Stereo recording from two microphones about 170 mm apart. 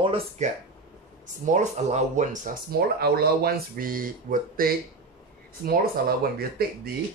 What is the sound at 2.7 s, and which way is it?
Speech, 65° right (ahead or behind).